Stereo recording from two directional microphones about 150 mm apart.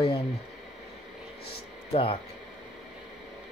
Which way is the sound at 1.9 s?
40° left (ahead or behind).